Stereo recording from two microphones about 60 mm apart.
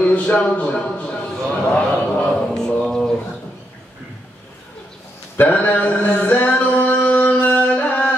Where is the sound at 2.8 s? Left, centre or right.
Centre.